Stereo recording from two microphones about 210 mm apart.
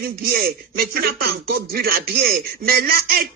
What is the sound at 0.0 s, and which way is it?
Speech, 45° right (ahead or behind).